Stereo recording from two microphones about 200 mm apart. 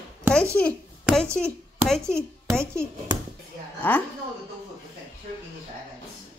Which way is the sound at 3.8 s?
10° left (ahead or behind).